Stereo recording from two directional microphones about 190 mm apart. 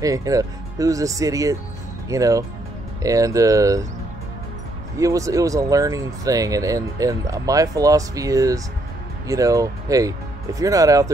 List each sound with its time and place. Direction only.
0.0 s speech: 20° right (ahead or behind)
4.9 s speech: 15° right (ahead or behind)